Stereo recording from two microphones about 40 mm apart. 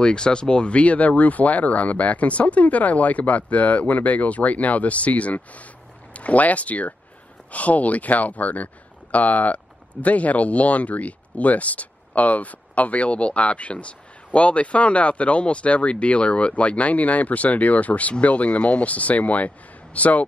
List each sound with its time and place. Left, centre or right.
0.0 s speech: left